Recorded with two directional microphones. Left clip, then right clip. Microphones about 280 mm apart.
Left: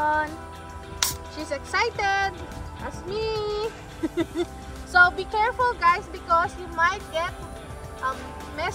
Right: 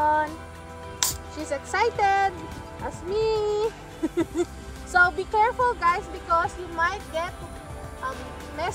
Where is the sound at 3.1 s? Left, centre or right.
Centre.